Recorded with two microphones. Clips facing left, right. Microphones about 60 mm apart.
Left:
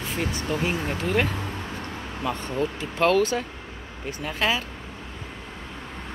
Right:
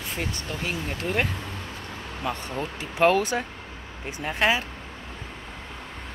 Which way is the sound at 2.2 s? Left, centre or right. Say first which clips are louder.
Left 3 dB; centre.